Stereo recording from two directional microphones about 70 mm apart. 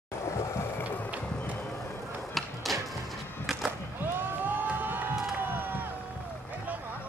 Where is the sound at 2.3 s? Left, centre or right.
Centre.